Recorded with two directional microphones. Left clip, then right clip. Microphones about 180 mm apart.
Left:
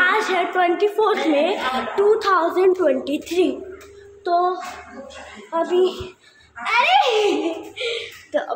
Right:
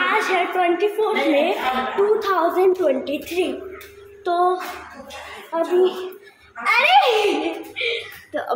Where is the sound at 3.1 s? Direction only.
15° left (ahead or behind).